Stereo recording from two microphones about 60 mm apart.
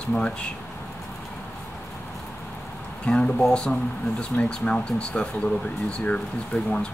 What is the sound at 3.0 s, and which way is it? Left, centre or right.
Speech, centre.